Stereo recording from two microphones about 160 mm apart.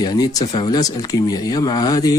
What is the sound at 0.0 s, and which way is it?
A man's voice, 25° left (ahead or behind).